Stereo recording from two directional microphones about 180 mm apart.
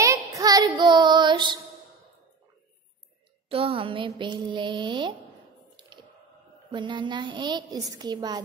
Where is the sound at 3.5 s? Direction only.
30° right (ahead or behind).